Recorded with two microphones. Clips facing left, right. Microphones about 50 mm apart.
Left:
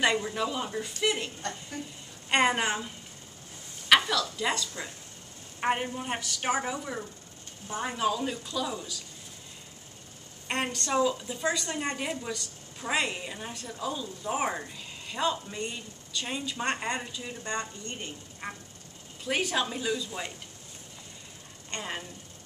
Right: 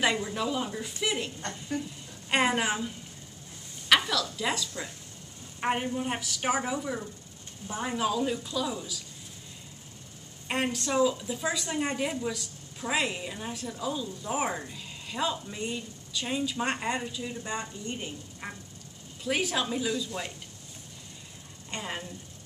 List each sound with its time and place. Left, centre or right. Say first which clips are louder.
0.0 s a woman's voice: left 1 dB; centre
3.9 s a woman's voice: left 1 dB; centre
10.5 s a woman's voice: even; centre
21.6 s a woman's voice: even; centre